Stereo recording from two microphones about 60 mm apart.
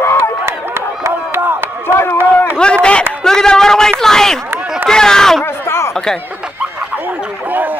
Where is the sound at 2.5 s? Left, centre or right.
Centre.